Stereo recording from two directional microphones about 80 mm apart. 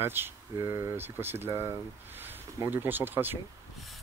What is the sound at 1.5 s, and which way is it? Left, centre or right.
Speech, right.